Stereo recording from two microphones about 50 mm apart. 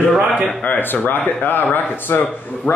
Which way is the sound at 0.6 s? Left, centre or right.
Left.